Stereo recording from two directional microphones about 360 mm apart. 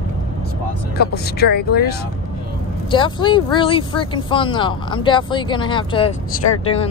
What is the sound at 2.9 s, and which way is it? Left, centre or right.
Speech, centre.